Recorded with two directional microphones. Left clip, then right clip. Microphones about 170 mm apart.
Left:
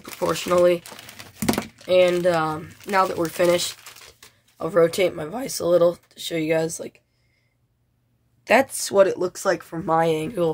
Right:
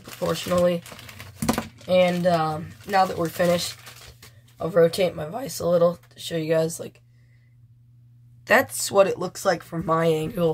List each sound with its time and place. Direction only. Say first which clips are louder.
0.3 s speech: left 4 dB; 35° left (ahead or behind)
1.9 s speech: left 2 dB; 35° left (ahead or behind)
8.5 s speech: left 1 dB; 20° left (ahead or behind)